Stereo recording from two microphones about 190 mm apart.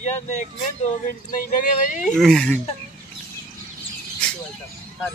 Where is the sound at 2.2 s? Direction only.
5° left (ahead or behind).